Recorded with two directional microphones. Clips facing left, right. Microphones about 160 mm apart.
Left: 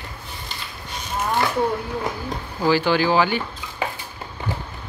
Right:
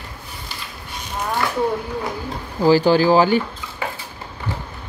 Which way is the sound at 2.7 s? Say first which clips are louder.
Right 5 dB; 40° right (ahead or behind).